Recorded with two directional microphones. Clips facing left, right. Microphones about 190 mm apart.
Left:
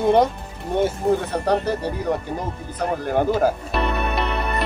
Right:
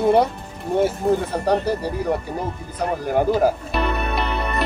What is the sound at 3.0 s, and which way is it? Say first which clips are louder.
Speech: right 1 dB; 10° right (ahead or behind).